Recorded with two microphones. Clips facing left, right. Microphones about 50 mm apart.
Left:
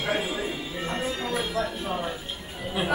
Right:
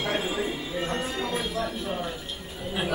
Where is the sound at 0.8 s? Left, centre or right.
Centre.